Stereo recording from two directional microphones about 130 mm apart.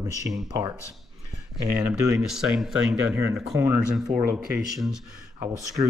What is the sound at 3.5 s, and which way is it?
Speech, 15° right (ahead or behind).